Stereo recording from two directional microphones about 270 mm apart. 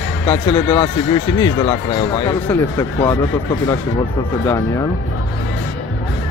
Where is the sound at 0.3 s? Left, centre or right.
Centre.